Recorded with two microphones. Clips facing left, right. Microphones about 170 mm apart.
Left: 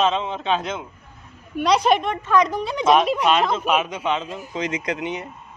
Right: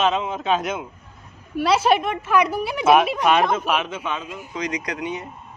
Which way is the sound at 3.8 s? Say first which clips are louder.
Left 4 dB; 20° left (ahead or behind).